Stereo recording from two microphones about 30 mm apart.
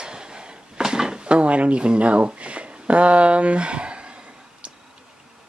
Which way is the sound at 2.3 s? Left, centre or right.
Right.